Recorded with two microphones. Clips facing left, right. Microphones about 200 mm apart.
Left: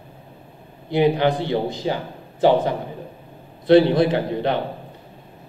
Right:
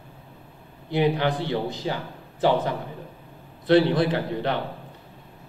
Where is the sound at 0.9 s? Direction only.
20° left (ahead or behind).